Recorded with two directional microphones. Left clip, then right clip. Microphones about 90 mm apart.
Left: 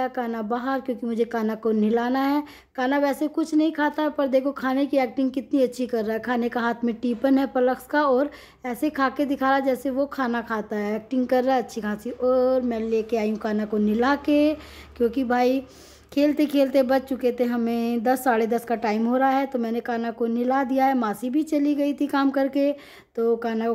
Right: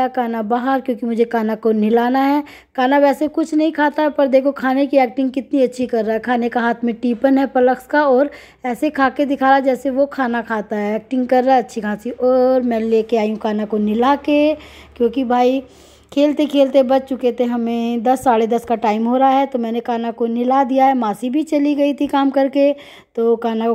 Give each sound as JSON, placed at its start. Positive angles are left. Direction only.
{"t": 0.0, "sound": "a woman's voice", "side_deg": -35}
{"t": 13.4, "sound": "a woman's voice", "side_deg": -25}
{"t": 20.0, "sound": "speech", "side_deg": -15}
{"t": 20.4, "sound": "a woman's voice", "side_deg": -25}